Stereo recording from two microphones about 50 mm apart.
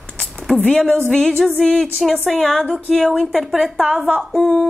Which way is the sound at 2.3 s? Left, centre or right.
Centre.